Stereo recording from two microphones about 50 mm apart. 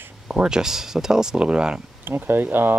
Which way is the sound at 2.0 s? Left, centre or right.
Right.